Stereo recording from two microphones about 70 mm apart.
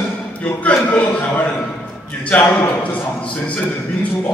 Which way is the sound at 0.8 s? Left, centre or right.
Left.